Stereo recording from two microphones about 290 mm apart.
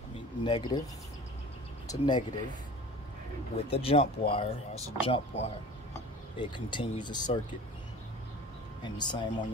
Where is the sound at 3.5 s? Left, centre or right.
Centre.